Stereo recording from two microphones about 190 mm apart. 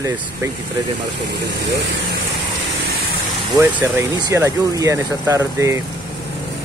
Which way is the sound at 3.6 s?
10° right (ahead or behind).